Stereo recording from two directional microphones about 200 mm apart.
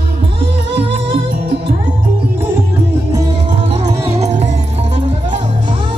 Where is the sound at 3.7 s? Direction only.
30° right (ahead or behind).